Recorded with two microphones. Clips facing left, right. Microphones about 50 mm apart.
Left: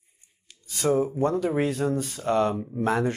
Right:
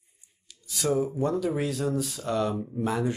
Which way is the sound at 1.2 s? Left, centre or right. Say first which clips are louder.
Left 3 dB; left.